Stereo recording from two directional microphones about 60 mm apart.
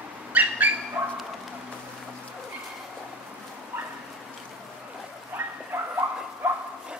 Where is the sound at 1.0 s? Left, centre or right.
Right.